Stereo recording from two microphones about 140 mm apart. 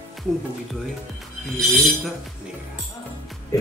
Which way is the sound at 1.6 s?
Centre (ahead or behind).